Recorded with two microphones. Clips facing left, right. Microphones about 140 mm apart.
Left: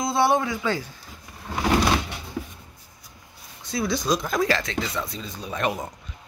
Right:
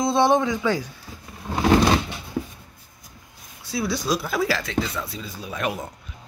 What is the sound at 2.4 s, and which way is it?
Writing, 30° right (ahead or behind).